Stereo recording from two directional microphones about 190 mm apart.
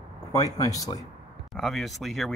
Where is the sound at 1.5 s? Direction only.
Centre (ahead or behind).